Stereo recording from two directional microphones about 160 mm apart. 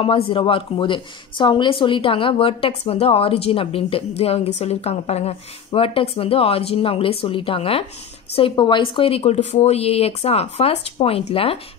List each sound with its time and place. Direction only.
0.0 s speech: 30° left (ahead or behind)